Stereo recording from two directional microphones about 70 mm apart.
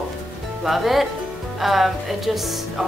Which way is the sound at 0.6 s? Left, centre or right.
Centre.